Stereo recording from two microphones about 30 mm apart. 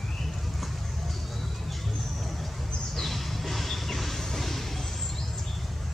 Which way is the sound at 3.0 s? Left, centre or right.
Centre.